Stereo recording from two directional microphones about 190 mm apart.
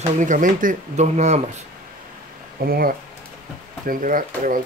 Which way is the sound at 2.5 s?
50° right (ahead or behind).